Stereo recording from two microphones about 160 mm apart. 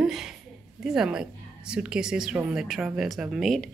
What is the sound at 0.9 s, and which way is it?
A woman's voice, 5° right (ahead or behind).